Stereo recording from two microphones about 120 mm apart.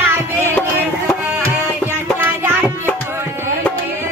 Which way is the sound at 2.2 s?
20° right (ahead or behind).